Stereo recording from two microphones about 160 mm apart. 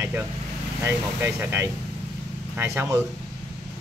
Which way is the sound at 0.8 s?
15° right (ahead or behind).